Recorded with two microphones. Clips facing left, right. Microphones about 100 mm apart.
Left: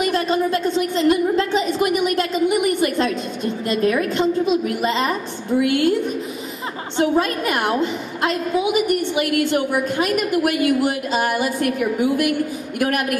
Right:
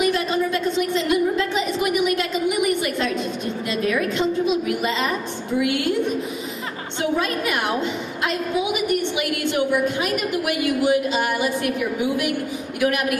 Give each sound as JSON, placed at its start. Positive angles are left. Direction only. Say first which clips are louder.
{"t": 0.0, "sound": "a woman's voice", "louder": "left 2 dB", "side_deg": 40}
{"t": 2.0, "sound": "a sound", "louder": "left 3 dB", "side_deg": 40}
{"t": 3.6, "sound": "a woman's voice", "louder": "left 4 dB", "side_deg": 40}
{"t": 7.0, "sound": "a woman's voice", "louder": "left 4 dB", "side_deg": 40}
{"t": 9.1, "sound": "a woman's voice", "louder": "left 4 dB", "side_deg": 40}
{"t": 12.8, "sound": "a woman's voice", "louder": "even", "side_deg": 45}